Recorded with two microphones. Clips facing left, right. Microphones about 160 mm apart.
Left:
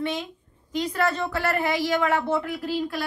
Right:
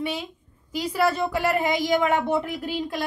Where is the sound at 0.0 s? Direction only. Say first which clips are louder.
Left 1 dB; 10° right (ahead or behind).